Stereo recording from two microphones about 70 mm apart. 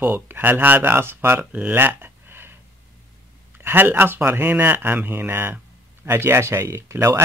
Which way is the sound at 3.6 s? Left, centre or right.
Right.